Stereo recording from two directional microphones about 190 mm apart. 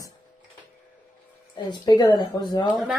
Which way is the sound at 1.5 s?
20° left (ahead or behind).